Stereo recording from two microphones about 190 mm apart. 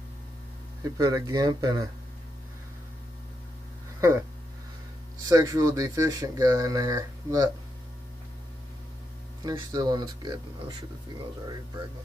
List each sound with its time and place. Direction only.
0.8 s speech: 20° right (ahead or behind)
5.2 s speech: 15° right (ahead or behind)
9.4 s speech: 20° right (ahead or behind)